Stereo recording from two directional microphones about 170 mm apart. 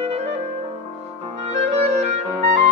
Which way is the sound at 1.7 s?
40° right (ahead or behind).